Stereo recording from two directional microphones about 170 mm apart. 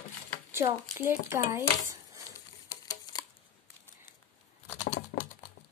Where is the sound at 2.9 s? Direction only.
25° left (ahead or behind).